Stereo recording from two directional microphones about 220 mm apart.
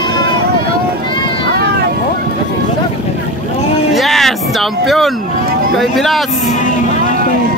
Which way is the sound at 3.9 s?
Centre (ahead or behind).